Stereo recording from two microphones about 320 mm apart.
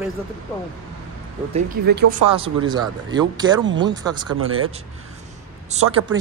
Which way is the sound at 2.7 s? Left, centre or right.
Centre.